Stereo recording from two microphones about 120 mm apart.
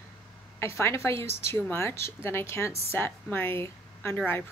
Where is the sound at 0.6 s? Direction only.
20° left (ahead or behind).